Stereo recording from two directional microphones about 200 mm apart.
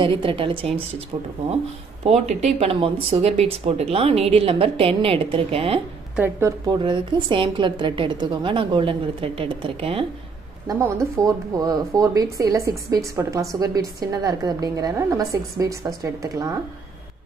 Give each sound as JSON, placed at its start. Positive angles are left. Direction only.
{"t": 0.0, "sound": "speech", "side_deg": -25}
{"t": 2.0, "sound": "speech", "side_deg": -35}
{"t": 6.1, "sound": "a woman's voice", "side_deg": -10}
{"t": 6.6, "sound": "speech", "side_deg": -20}
{"t": 10.7, "sound": "a woman's voice", "side_deg": -15}